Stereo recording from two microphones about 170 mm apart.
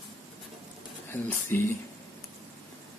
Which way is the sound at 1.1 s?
15° left (ahead or behind).